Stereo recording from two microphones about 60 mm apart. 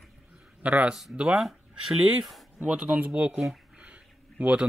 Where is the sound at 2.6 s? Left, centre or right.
Right.